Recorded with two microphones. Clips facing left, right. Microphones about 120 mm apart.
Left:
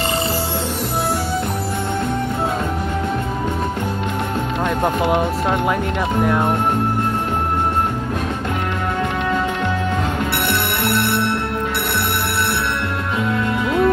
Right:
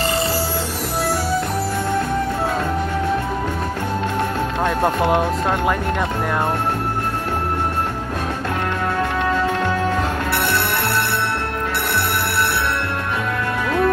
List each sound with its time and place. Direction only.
5.0 s speech: 5° left (ahead or behind)
13.7 s music: 20° left (ahead or behind)